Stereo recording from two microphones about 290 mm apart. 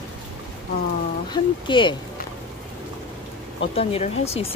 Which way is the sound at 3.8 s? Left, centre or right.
Left.